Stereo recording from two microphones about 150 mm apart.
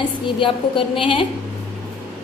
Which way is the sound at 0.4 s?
35° left (ahead or behind).